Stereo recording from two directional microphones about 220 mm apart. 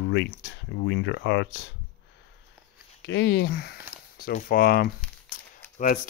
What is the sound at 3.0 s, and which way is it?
Speech, 50° left (ahead or behind).